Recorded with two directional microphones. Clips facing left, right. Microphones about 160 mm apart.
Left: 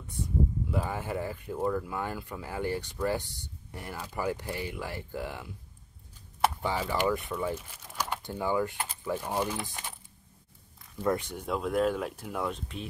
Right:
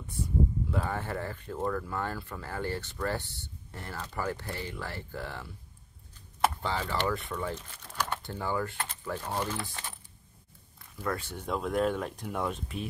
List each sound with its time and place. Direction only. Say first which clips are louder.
0.7 s speech: even; 10° left (ahead or behind)
6.6 s speech: left 2 dB; 15° left (ahead or behind)
11.0 s speech: left 5 dB; 20° left (ahead or behind)
11.4 s speech: left 1 dB; centre (ahead or behind)